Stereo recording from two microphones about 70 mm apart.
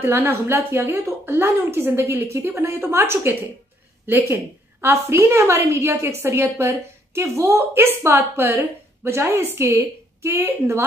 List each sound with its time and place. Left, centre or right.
0.0 s a woman's voice: right